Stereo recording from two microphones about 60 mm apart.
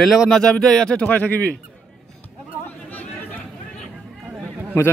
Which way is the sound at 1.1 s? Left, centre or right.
Left.